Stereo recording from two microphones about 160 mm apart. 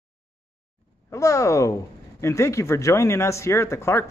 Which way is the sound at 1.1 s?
20° left (ahead or behind).